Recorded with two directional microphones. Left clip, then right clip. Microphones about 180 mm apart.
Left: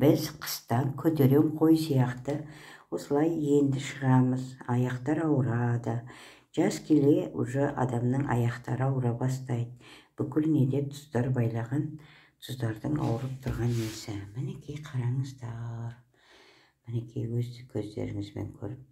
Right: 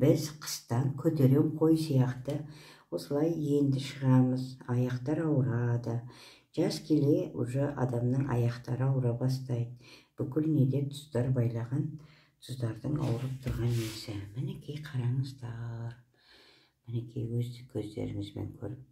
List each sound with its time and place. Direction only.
0.0 s speech: 15° left (ahead or behind)
3.3 s speech: 50° left (ahead or behind)
3.5 s speech: 15° left (ahead or behind)
6.9 s speech: 20° left (ahead or behind)
16.9 s speech: 20° left (ahead or behind)